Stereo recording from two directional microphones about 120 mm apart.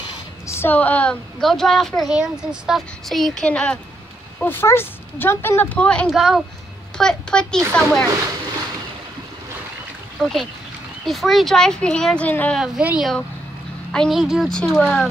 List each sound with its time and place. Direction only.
0.5 s a woman's voice: 15° left (ahead or behind)
6.0 s speech: 5° right (ahead or behind)
10.2 s speech: 5° left (ahead or behind)
12.5 s speech: 5° right (ahead or behind)